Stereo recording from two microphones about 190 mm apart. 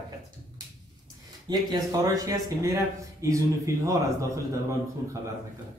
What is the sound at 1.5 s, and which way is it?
Speech, 20° right (ahead or behind).